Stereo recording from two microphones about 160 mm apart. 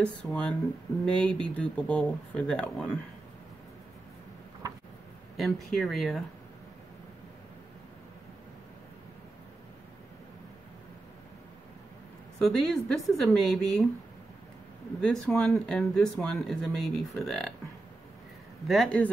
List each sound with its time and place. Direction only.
0.0 s speech: 5° left (ahead or behind)
5.4 s speech: centre (ahead or behind)
12.4 s speech: 5° left (ahead or behind)
15.0 s speech: 5° left (ahead or behind)
18.7 s speech: 5° left (ahead or behind)